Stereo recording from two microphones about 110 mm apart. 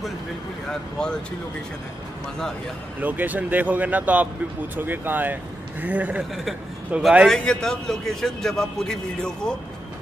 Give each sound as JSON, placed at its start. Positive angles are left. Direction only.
{"t": 3.0, "sound": "speech", "side_deg": -15}
{"t": 6.3, "sound": "a man's voice", "side_deg": 0}